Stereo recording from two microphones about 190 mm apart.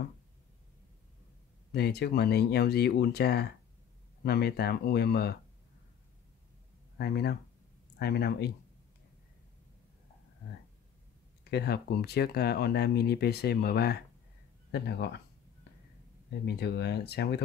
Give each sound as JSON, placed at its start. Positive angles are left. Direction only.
{"t": 1.7, "sound": "speech", "side_deg": 60}
{"t": 7.0, "sound": "speech", "side_deg": 60}
{"t": 11.5, "sound": "speech", "side_deg": 60}
{"t": 16.4, "sound": "speech", "side_deg": 60}